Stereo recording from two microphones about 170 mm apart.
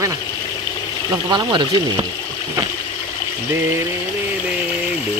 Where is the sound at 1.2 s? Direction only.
25° right (ahead or behind).